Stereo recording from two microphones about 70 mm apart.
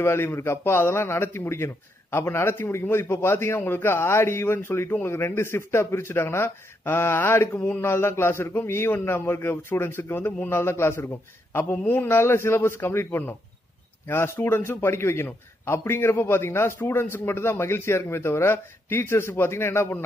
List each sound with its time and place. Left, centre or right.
0.0 s a man's voice: left